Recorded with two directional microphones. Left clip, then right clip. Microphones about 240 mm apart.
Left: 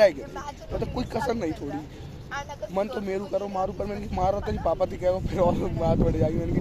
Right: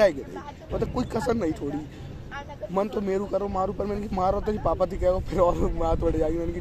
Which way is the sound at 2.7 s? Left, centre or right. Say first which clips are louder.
Right 2 dB; right.